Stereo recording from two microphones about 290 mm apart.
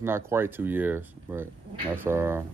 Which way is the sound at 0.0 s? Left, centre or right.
Centre.